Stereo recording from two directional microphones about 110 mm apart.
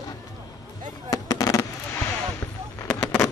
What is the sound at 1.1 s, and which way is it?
Fireworks, 35° left (ahead or behind).